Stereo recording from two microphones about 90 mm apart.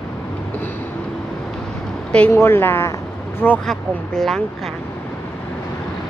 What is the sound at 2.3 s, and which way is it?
Speech, 30° left (ahead or behind).